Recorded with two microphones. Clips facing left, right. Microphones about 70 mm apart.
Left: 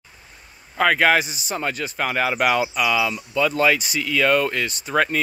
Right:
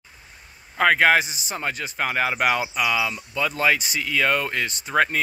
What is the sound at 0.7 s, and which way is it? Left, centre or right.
Speech, right.